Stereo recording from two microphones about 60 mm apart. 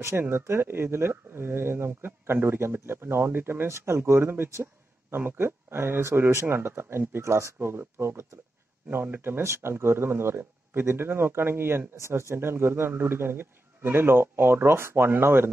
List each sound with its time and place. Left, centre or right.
0.1 s speech: right